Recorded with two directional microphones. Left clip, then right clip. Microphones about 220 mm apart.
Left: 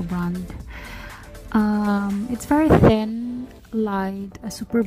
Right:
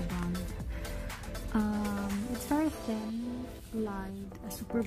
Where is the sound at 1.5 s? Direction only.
40° left (ahead or behind).